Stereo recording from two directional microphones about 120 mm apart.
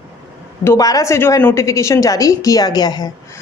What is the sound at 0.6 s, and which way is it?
Speech, 25° left (ahead or behind).